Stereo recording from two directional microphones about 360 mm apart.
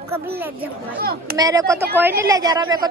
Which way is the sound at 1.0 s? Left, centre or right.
Right.